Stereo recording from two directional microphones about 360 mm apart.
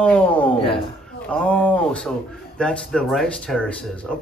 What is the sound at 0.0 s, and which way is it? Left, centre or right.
Speech, centre.